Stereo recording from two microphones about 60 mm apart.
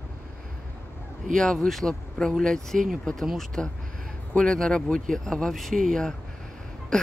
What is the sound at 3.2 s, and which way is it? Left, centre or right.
Speech, centre.